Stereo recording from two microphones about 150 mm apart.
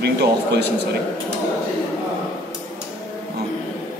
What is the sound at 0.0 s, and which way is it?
Speech, 90° right.